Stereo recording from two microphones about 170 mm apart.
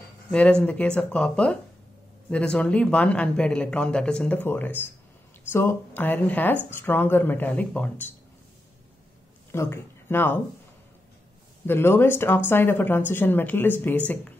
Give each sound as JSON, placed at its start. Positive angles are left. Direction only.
{"t": 0.3, "sound": "a woman's voice", "side_deg": 5}
{"t": 9.5, "sound": "speech", "side_deg": 15}
{"t": 11.6, "sound": "a woman's voice", "side_deg": 15}